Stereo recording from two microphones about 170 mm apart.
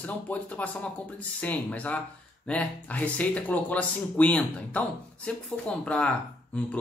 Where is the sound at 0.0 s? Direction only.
10° left (ahead or behind).